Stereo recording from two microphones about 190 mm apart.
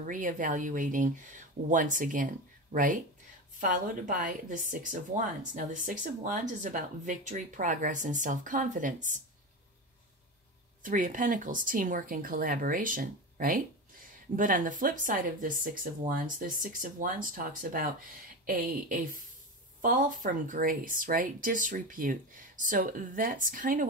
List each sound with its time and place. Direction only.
0.0 s speech: 45° right (ahead or behind)
10.8 s speech: 45° right (ahead or behind)